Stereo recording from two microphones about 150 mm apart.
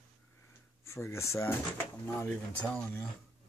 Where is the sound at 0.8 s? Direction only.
20° left (ahead or behind).